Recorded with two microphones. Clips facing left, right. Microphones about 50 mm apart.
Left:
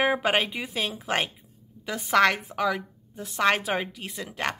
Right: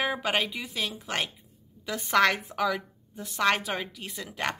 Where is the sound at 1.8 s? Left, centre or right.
Centre.